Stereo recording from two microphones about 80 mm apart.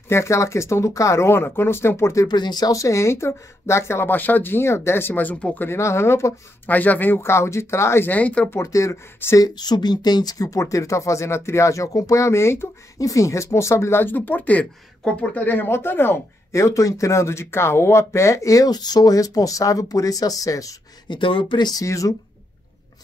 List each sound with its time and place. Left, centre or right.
0.1 s speech: left
2.2 s speech: left
2.7 s speech: left; by 5.7 s centre
5.7 s speech: left
6.7 s speech: left
8.1 s speech: centre
8.5 s speech: left
9.4 s speech: left
21.1 s speech: left
21.8 s speech: left